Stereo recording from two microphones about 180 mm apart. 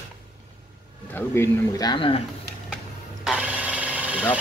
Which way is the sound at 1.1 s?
15° left (ahead or behind).